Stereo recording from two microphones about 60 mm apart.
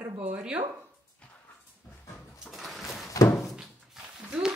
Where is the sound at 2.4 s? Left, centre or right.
Centre.